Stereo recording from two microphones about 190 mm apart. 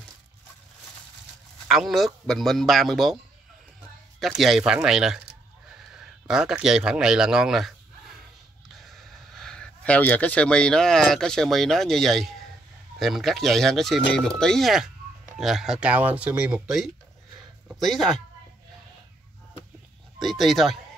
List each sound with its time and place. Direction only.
1.7 s speech: centre (ahead or behind)
4.2 s speech: centre (ahead or behind)
8.7 s speech: centre (ahead or behind)
20.2 s speech: centre (ahead or behind)